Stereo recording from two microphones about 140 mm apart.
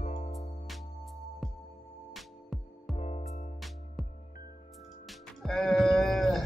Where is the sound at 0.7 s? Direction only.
Centre (ahead or behind).